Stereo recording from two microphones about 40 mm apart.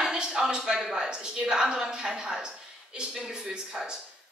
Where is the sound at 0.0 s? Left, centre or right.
Right.